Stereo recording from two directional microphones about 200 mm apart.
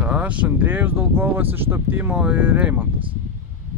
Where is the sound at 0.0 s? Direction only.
5° right (ahead or behind).